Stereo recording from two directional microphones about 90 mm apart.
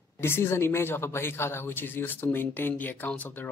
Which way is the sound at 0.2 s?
25° left (ahead or behind).